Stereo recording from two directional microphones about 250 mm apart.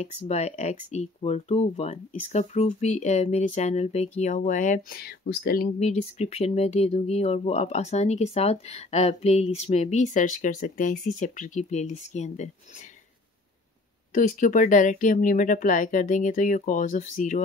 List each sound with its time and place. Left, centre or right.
0.0 s speech: left
14.1 s speech: left